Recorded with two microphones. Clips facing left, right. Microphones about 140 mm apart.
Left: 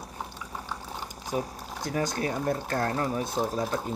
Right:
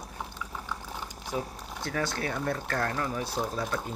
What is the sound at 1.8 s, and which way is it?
Speech, 20° left (ahead or behind).